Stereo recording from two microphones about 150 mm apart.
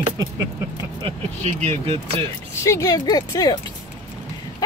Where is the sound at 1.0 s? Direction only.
45° right (ahead or behind).